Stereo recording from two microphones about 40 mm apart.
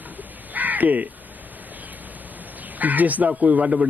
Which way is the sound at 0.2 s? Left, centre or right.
Right.